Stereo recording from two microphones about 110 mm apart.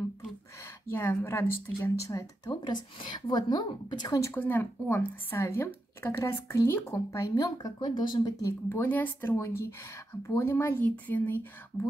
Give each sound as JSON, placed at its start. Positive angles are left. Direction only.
{"t": 0.8, "sound": "speech", "side_deg": 20}
{"t": 2.5, "sound": "a woman's voice", "side_deg": 45}
{"t": 4.2, "sound": "speech", "side_deg": 15}
{"t": 8.6, "sound": "speech", "side_deg": 20}